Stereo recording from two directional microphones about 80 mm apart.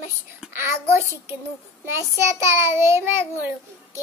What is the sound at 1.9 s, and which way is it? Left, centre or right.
A child's voice, right.